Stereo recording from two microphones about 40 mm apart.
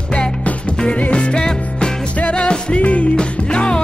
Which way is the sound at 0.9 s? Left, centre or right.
Left.